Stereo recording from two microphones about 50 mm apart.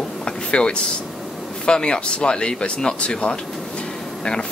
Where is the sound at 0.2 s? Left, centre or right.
Centre.